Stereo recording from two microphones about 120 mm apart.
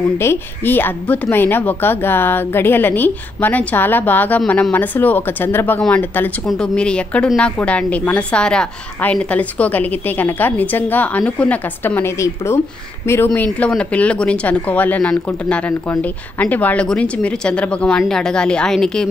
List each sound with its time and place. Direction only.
0.2 s speech: 20° left (ahead or behind)